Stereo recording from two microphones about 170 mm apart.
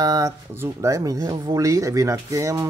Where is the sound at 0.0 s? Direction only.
20° right (ahead or behind).